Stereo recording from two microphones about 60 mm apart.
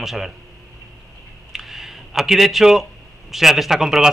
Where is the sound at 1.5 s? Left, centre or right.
Centre.